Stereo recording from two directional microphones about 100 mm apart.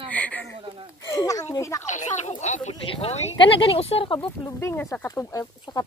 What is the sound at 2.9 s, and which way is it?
Speech, 90° left.